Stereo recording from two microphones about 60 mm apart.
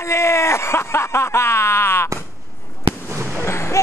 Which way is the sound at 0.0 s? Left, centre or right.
Left.